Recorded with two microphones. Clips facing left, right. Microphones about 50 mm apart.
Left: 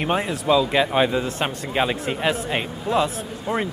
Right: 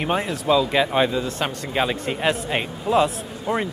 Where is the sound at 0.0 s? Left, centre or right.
Centre.